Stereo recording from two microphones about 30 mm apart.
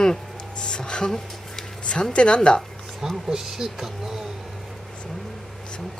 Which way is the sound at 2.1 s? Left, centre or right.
Left.